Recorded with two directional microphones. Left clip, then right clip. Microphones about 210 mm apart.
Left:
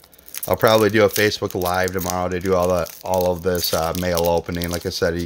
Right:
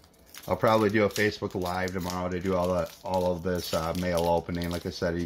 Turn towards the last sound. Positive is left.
turn(degrees=50)  # may be behind; listen again after turning